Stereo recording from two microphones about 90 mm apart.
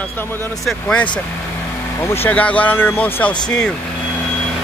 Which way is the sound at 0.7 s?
10° left (ahead or behind).